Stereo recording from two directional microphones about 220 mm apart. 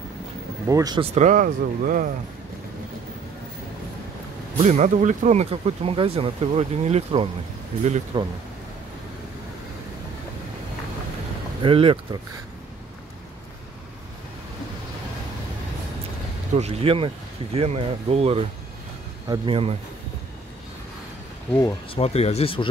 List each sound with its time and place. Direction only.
0.7 s speech: 15° right (ahead or behind); by 2.0 s 35° right (ahead or behind)
4.6 s speech: 35° right (ahead or behind)
11.6 s speech: 25° right (ahead or behind)
16.5 s speech: 25° right (ahead or behind)
21.5 s speech: 15° left (ahead or behind)
22.0 s speech: 30° left (ahead or behind)